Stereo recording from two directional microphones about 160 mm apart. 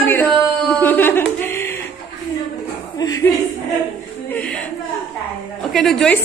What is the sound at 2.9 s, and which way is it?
Speech, 25° left (ahead or behind).